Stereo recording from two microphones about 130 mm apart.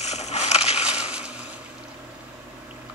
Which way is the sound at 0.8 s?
10° right (ahead or behind).